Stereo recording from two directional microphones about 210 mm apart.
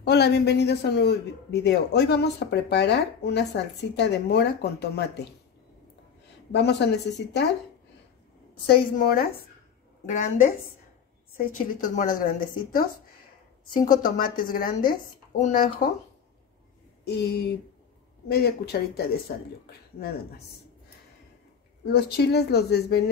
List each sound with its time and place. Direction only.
0.0 s a man's voice: 50° left (ahead or behind)
6.5 s a man's voice: 55° left (ahead or behind)
8.6 s a man's voice: 45° left (ahead or behind)
10.0 s a woman's voice: 35° left (ahead or behind)
14.0 s a man's voice: 40° left (ahead or behind)
17.0 s a man's voice: 50° left (ahead or behind)
21.8 s a man's voice: 50° left (ahead or behind)